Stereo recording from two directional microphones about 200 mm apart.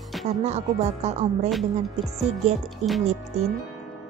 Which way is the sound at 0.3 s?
35° right (ahead or behind).